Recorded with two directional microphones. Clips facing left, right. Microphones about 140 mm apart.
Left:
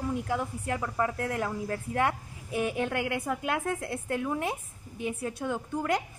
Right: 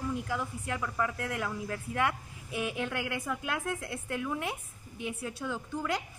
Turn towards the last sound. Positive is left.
turn(degrees=50)  # may be behind; listen again after turning